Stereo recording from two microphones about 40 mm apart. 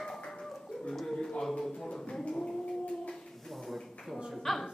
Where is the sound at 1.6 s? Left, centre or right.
Centre.